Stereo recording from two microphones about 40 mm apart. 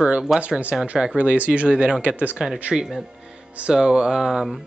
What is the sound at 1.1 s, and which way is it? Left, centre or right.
Speech, right.